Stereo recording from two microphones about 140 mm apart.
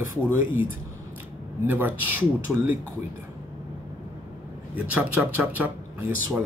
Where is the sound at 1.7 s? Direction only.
15° right (ahead or behind).